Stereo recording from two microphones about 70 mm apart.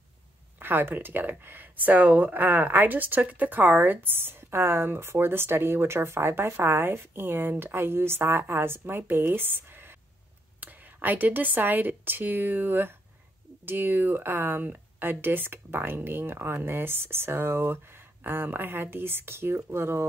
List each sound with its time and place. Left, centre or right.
0.6 s speech: right